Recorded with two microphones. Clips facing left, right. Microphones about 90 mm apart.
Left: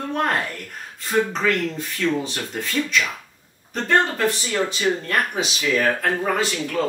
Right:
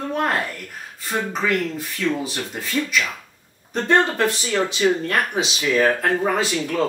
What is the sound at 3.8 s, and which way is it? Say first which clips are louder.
Speech: right 1 dB; 25° right (ahead or behind).